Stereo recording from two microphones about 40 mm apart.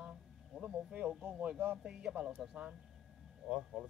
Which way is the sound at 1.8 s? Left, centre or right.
Centre.